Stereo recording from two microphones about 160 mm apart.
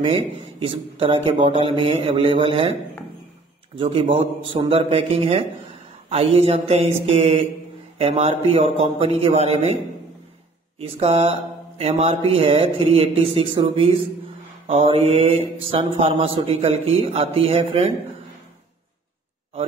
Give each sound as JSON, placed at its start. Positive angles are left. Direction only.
{"t": 0.0, "sound": "mantra", "side_deg": -35}
{"t": 3.7, "sound": "mantra", "side_deg": -35}
{"t": 10.8, "sound": "mantra", "side_deg": -40}